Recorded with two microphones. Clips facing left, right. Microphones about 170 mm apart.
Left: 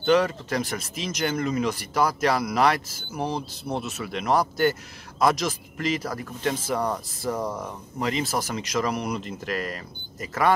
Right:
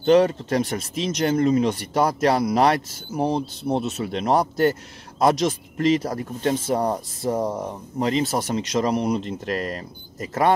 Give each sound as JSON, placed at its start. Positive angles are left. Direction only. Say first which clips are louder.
{"t": 0.0, "sound": "speech", "louder": "right 4 dB", "side_deg": -30}